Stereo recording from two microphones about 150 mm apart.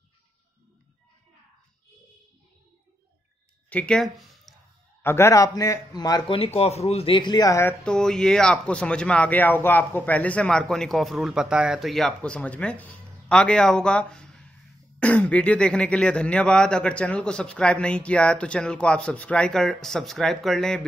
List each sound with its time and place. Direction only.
3.7 s speech: 5° left (ahead or behind)
5.0 s speech: 15° left (ahead or behind)
6.3 s speech: 40° left (ahead or behind); by 7.7 s 20° left (ahead or behind)
7.8 s speech: 5° left (ahead or behind)